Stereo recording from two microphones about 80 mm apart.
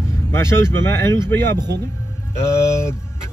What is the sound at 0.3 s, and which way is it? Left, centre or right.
Speech, left.